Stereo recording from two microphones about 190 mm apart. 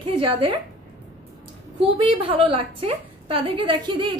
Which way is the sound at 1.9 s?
30° right (ahead or behind).